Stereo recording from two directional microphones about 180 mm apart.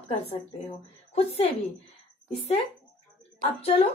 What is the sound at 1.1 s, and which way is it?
Speech, 35° left (ahead or behind).